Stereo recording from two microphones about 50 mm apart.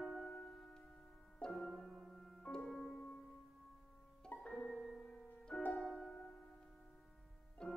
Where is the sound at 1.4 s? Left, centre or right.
Centre.